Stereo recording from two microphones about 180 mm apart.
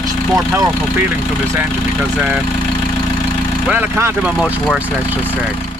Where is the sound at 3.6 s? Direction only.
10° right (ahead or behind).